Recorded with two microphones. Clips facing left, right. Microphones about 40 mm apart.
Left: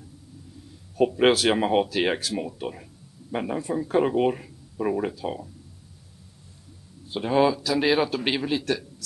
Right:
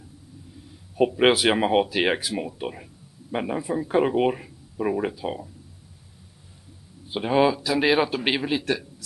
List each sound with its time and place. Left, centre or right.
0.9 s speech: centre
7.1 s speech: centre